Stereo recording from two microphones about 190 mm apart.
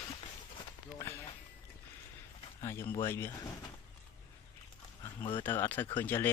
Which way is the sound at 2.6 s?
15° left (ahead or behind).